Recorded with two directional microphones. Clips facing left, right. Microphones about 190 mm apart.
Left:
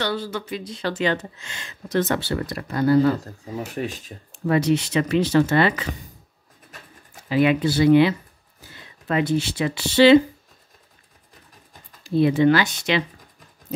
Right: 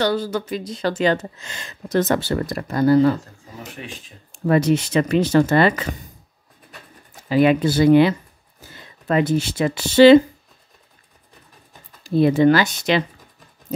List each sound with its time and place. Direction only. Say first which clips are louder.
0.0 s speech: right 5 dB; 40° right (ahead or behind)
3.7 s speech: left 7 dB; 40° left (ahead or behind)
4.5 s speech: right 2 dB; 45° right (ahead or behind)
7.2 s speech: right 3 dB; 40° right (ahead or behind)
12.0 s speech: right 2 dB; 40° right (ahead or behind)